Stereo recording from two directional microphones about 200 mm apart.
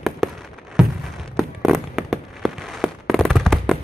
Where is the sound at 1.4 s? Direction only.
Centre (ahead or behind).